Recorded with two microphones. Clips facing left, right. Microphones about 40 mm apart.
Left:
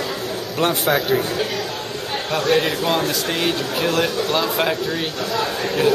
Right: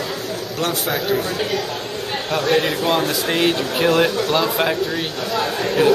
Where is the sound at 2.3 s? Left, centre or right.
Centre.